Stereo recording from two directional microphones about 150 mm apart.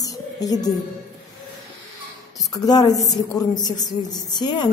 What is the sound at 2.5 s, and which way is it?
A woman's voice, 25° left (ahead or behind).